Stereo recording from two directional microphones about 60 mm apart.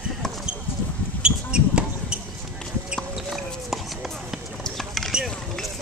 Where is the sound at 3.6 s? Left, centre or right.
Centre.